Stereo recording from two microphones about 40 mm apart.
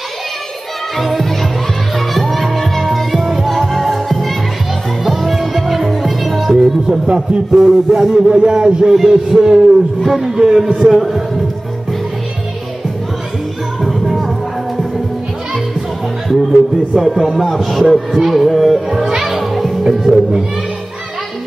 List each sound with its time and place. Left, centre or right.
0.9 s music: centre
8.3 s a man's voice: right
8.9 s music: centre
10.9 s speech: centre
13.7 s music: centre
16.9 s music: centre
17.4 s speech: centre
19.2 s music: centre